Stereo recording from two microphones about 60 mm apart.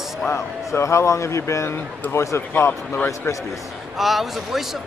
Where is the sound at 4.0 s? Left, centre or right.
Centre.